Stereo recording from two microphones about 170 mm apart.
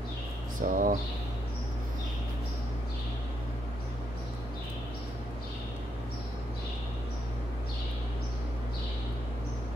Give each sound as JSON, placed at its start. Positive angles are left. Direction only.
{"t": 0.6, "sound": "speech", "side_deg": -50}